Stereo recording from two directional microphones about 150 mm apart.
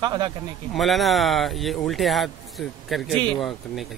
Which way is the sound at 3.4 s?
Centre (ahead or behind).